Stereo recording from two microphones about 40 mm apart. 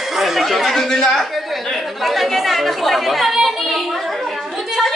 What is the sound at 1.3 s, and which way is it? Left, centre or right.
Chatter, centre.